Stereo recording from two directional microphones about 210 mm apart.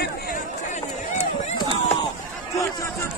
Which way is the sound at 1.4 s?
25° left (ahead or behind).